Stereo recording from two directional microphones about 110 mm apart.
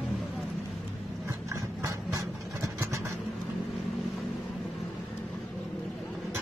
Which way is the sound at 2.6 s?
25° right (ahead or behind).